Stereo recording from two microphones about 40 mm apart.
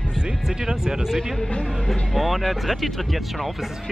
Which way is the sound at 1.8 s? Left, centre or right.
Centre.